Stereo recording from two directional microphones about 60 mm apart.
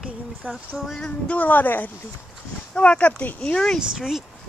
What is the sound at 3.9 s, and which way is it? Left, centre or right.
Speech, centre.